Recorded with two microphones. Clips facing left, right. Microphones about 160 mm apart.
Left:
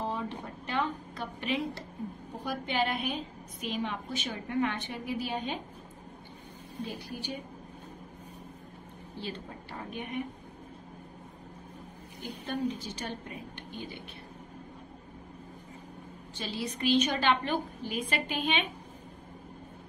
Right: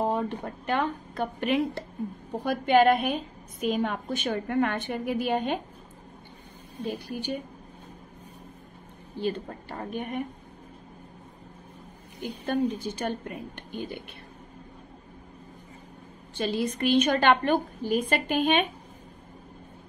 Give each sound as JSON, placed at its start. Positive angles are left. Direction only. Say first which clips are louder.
{"t": 0.0, "sound": "a woman's voice", "louder": "right 7 dB", "side_deg": -55}
{"t": 6.9, "sound": "a woman's voice", "louder": "right 10 dB", "side_deg": -55}
{"t": 9.2, "sound": "a woman's voice", "louder": "right 10 dB", "side_deg": -50}
{"t": 12.4, "sound": "a woman's voice", "louder": "right 6 dB", "side_deg": -50}
{"t": 16.3, "sound": "a woman's voice", "louder": "right 8 dB", "side_deg": -55}